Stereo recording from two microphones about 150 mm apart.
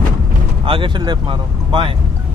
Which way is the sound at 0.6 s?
35° right (ahead or behind).